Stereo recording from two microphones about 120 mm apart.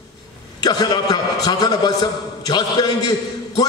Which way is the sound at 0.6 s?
35° left (ahead or behind).